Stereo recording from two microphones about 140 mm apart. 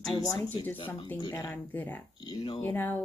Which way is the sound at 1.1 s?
25° left (ahead or behind).